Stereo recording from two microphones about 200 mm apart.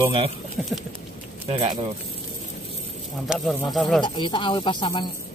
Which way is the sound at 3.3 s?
5° right (ahead or behind).